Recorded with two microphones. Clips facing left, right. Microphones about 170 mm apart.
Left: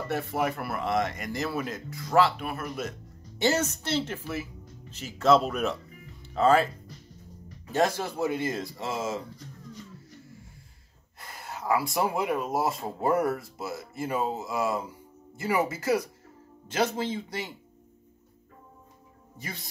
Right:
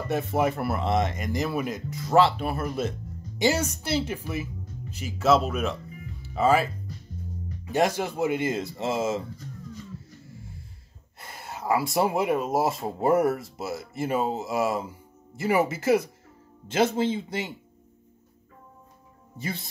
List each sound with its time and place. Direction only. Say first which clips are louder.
0.1 s speech: right 4 dB; 20° right (ahead or behind)
3.3 s speech: right 1 dB; 10° right (ahead or behind)
7.7 s speech: right 2 dB; 15° right (ahead or behind)
11.1 s speech: right 1 dB; 25° right (ahead or behind)
19.3 s speech: right 7 dB; 25° right (ahead or behind)